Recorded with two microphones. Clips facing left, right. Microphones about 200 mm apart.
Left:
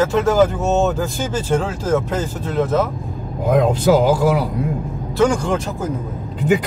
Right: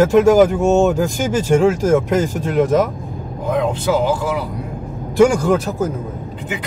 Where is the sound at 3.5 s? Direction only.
40° left (ahead or behind).